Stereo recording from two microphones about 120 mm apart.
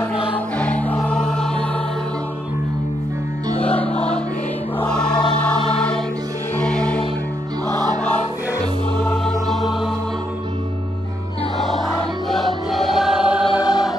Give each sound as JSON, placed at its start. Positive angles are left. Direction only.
{"t": 0.6, "sound": "music", "side_deg": 10}
{"t": 3.8, "sound": "music", "side_deg": 60}
{"t": 4.7, "sound": "choir", "side_deg": 10}
{"t": 5.4, "sound": "music", "side_deg": 10}
{"t": 7.6, "sound": "music", "side_deg": -35}
{"t": 8.9, "sound": "music", "side_deg": 10}
{"t": 12.3, "sound": "music", "side_deg": 0}
{"t": 13.5, "sound": "choir", "side_deg": 35}